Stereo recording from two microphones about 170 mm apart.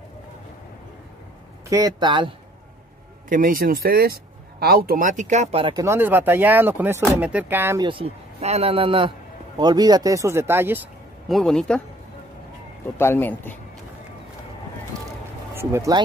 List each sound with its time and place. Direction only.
1.7 s speech: 20° right (ahead or behind)
3.3 s speech: 55° right (ahead or behind); by 5.8 s 35° right (ahead or behind)
5.8 s speech: 15° right (ahead or behind)
7.9 s speech: 35° right (ahead or behind); by 10.8 s 15° right (ahead or behind)
11.2 s speech: centre (ahead or behind)
12.9 s a man's voice: 15° left (ahead or behind)
15.5 s speech: 15° right (ahead or behind)